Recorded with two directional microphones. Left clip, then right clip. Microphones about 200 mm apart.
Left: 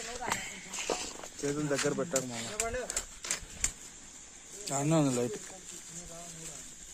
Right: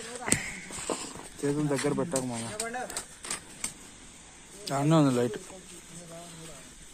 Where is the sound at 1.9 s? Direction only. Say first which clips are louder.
Right 2 dB; 35° right (ahead or behind).